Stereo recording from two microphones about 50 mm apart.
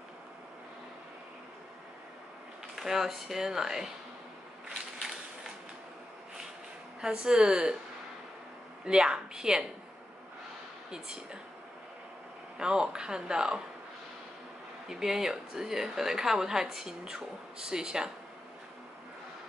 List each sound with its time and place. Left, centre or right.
2.7 s a woman's voice: centre
7.0 s a woman's voice: centre
8.8 s a woman's voice: centre
10.9 s a woman's voice: centre
12.5 s a woman's voice: centre
14.9 s a woman's voice: centre